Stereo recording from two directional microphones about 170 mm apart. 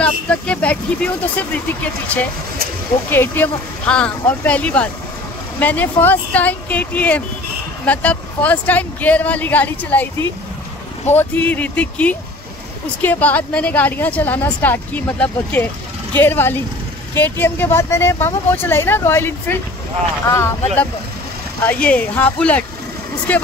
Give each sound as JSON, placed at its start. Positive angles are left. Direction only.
{"t": 0.0, "sound": "a woman's voice", "side_deg": 5}
{"t": 11.1, "sound": "a woman's voice", "side_deg": 10}